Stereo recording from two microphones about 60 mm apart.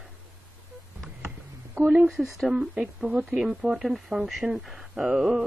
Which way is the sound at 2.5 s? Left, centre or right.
Centre.